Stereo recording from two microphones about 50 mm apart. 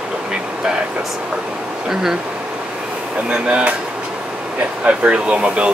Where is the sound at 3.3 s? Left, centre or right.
Right.